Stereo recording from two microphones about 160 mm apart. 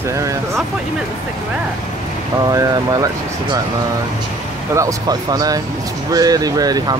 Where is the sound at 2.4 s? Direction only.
25° right (ahead or behind).